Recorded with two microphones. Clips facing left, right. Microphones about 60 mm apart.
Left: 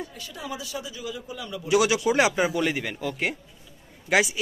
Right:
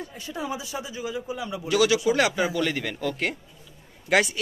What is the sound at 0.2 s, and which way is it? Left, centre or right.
A man's voice, right.